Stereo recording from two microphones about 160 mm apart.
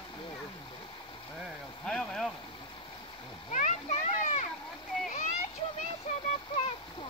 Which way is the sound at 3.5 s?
50° left (ahead or behind).